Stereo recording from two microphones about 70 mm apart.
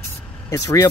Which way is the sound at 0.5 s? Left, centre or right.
Left.